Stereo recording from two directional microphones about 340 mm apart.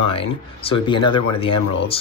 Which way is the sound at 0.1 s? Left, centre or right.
Centre.